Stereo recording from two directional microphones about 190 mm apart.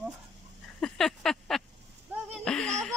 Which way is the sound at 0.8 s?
Centre (ahead or behind).